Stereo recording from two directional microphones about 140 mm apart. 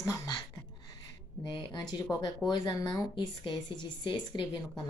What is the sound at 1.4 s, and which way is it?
Speech, 30° left (ahead or behind).